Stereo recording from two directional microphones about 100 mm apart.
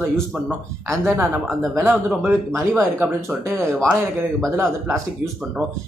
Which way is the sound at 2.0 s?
20° right (ahead or behind).